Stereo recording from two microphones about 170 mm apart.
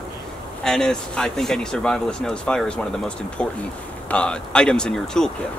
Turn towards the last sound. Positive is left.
turn(degrees=5)  # may be behind; listen again after turning